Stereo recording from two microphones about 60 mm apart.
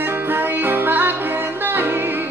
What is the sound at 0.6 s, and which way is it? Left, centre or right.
Music, right.